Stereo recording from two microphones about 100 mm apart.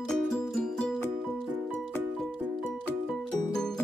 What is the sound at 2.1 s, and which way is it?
Music, 5° left (ahead or behind).